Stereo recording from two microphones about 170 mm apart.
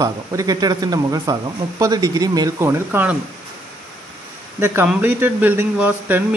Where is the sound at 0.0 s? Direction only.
20° right (ahead or behind).